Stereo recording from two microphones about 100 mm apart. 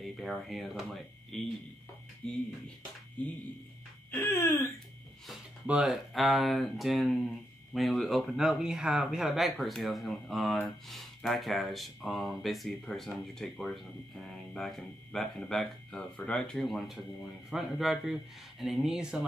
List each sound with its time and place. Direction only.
0.0 s speech: centre (ahead or behind)
4.2 s speech: 20° left (ahead or behind)
5.7 s speech: 10° right (ahead or behind)
6.1 s speech: centre (ahead or behind)